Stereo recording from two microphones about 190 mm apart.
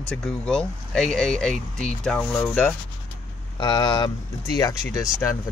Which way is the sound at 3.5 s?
25° left (ahead or behind).